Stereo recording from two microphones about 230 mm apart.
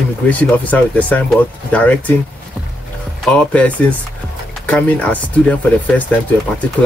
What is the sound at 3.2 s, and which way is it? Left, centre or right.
Speech, centre.